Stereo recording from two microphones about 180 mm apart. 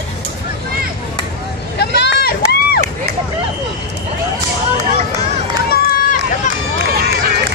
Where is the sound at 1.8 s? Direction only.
70° left (ahead or behind).